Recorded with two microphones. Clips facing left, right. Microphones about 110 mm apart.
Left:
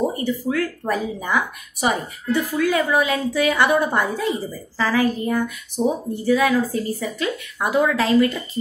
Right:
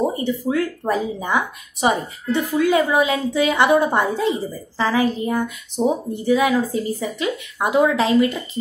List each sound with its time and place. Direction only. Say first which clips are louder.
0.1 s speech: right 1 dB; 20° right (ahead or behind)